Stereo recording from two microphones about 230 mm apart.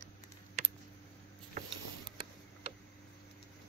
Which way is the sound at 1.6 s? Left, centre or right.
Right.